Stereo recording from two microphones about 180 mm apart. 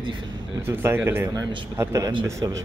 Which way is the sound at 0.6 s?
15° right (ahead or behind).